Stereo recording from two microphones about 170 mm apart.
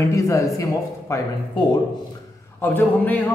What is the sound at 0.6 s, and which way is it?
Speech, 15° left (ahead or behind).